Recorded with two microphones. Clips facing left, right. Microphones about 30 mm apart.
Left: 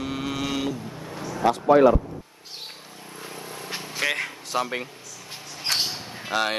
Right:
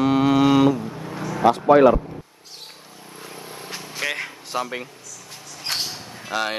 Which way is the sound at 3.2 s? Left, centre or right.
Centre.